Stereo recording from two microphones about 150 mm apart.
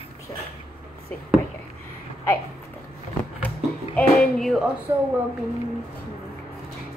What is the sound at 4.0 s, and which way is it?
Speech, 5° left (ahead or behind).